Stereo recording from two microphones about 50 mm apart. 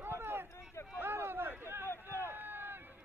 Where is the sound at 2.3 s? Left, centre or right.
Right.